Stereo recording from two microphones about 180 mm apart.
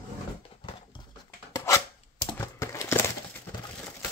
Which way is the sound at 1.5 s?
20° left (ahead or behind).